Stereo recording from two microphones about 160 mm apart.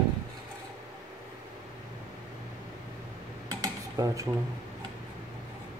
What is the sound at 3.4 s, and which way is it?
Dishes, 20° right (ahead or behind).